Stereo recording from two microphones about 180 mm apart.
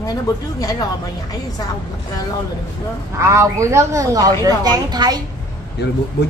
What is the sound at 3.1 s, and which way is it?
A woman's voice, 15° right (ahead or behind).